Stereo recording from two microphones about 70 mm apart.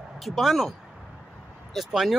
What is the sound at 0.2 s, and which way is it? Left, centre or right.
Speech, centre.